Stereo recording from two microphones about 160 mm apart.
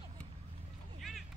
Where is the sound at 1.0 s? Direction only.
Centre (ahead or behind).